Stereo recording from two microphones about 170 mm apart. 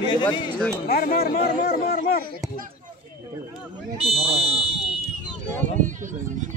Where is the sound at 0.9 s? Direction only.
60° left (ahead or behind).